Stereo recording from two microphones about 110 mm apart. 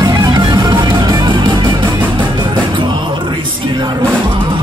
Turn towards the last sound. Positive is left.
turn(degrees=-45)  # may be behind; listen again after turning